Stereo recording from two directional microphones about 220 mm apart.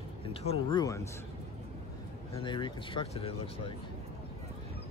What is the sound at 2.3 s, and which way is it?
Speech, 20° left (ahead or behind).